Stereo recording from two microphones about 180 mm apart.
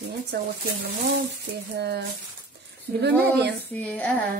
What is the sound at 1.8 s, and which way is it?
Speech, 65° right (ahead or behind).